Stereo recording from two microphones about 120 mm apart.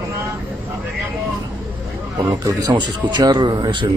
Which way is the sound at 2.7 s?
35° right (ahead or behind).